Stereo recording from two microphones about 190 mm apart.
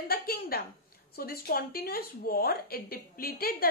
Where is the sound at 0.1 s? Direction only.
55° left (ahead or behind).